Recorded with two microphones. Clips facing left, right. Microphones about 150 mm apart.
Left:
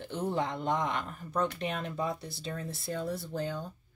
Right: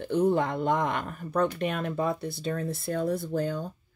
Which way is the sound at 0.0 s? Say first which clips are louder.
Right 8 dB; 55° right (ahead or behind).